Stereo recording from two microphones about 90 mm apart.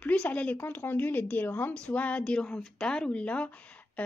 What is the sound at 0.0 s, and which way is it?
Speech, 15° left (ahead or behind).